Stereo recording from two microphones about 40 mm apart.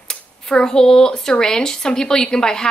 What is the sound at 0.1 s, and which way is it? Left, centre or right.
Speech, centre.